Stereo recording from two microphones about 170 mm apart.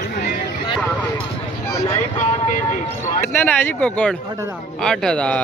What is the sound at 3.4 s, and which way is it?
Speech, 10° left (ahead or behind).